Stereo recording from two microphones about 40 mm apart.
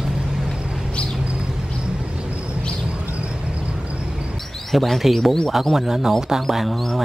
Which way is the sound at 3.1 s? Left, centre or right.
Right.